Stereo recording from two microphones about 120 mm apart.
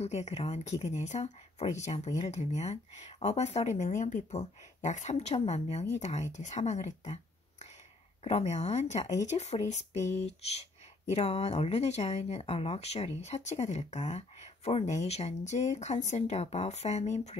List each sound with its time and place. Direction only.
0.0 s speech: 65° left (ahead or behind)
5.9 s speech: 75° left (ahead or behind)